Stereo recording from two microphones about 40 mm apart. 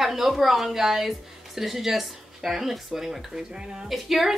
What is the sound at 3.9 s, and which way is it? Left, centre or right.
Speech, centre.